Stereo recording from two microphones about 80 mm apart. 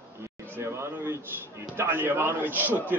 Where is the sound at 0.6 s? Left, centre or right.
Right.